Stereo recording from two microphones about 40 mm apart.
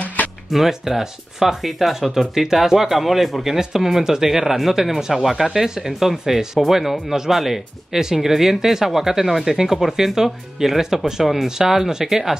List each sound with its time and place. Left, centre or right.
0.0 s music: left
0.5 s speech: centre